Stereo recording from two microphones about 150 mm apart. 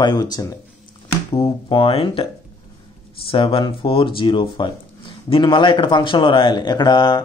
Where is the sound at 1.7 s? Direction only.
35° left (ahead or behind).